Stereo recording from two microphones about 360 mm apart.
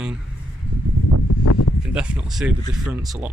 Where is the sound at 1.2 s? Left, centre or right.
Left.